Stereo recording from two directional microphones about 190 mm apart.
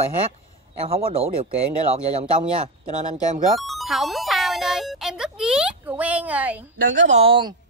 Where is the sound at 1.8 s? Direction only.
30° right (ahead or behind).